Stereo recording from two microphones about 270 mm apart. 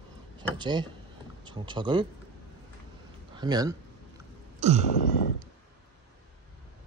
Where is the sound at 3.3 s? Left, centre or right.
Centre.